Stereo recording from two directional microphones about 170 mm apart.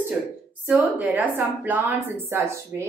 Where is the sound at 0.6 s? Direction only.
10° right (ahead or behind).